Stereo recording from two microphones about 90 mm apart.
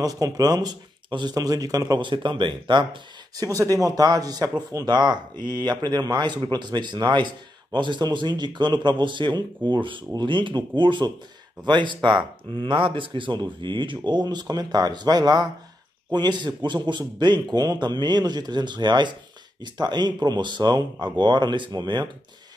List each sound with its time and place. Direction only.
0.0 s speech: 45° right (ahead or behind)
2.0 s speech: 65° right (ahead or behind)
3.3 s speech: 40° right (ahead or behind); by 22.1 s 60° right (ahead or behind)